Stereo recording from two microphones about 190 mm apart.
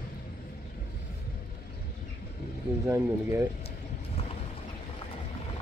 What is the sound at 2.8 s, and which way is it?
Speech, 15° right (ahead or behind).